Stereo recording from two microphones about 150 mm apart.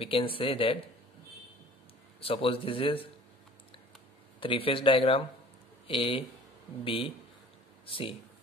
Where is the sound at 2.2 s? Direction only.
40° left (ahead or behind).